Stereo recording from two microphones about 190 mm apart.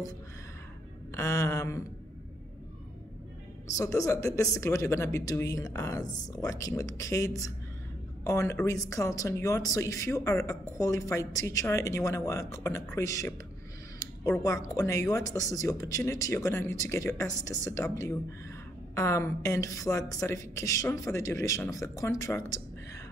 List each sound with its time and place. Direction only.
1.1 s a woman's voice: 15° left (ahead or behind)
3.6 s a woman's voice: 15° left (ahead or behind)
13.9 s a sound: 15° left (ahead or behind)
14.8 s a woman's voice: 15° left (ahead or behind)